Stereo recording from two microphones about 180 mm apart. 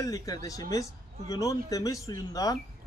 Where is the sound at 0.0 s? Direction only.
20° left (ahead or behind).